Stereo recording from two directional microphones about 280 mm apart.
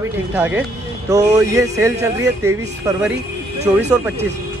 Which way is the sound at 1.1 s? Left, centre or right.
Centre.